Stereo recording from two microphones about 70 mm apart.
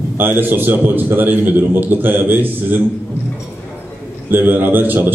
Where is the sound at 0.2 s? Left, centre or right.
Right.